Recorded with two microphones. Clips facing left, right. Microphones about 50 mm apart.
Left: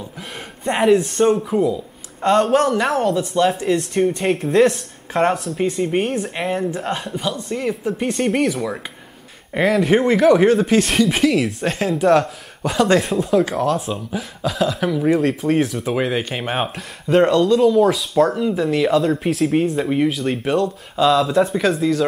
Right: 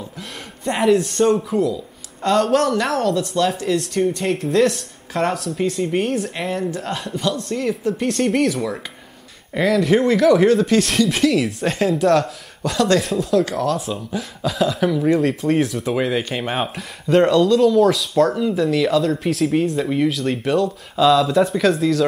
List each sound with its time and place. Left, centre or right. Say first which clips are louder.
0.7 s speech: left 1 dB; centre
3.9 s speech: left 1 dB; left
4.3 s speech: left 3 dB; centre
9.5 s speech: left 1 dB; left
9.9 s speech: left 1 dB; centre
13.0 s speech: left 1 dB; centre